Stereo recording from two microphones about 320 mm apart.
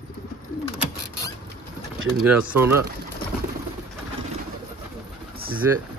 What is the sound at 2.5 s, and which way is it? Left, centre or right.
Speech, centre.